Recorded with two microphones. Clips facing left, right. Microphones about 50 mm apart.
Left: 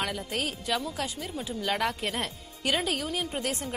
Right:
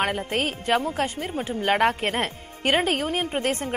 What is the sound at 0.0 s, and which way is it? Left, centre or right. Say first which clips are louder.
A woman's voice: right 7 dB; right.